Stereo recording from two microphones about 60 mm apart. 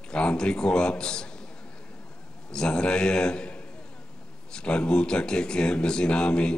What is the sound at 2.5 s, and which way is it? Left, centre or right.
A man's voice, centre.